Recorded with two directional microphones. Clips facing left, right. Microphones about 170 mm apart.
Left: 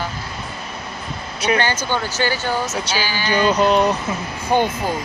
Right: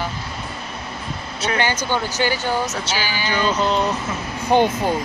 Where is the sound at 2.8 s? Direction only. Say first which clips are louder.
Left 1 dB; 15° left (ahead or behind).